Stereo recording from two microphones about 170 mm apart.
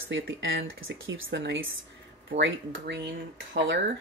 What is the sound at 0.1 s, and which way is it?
Speech, 90° right.